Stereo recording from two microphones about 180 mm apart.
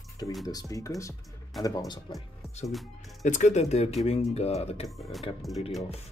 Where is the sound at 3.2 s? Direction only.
40° left (ahead or behind).